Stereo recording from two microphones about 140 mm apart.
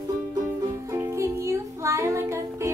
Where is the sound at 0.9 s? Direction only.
20° right (ahead or behind).